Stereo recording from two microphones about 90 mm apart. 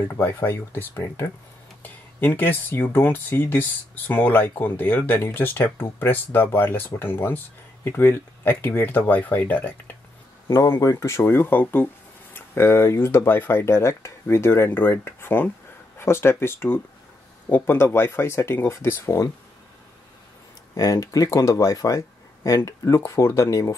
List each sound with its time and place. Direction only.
0.1 s speech: 20° left (ahead or behind)
1.8 s speech: 20° left (ahead or behind)
10.5 s speech: 35° left (ahead or behind)
20.7 s speech: 40° left (ahead or behind)